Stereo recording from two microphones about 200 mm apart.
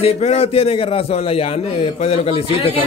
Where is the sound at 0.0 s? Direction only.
30° left (ahead or behind).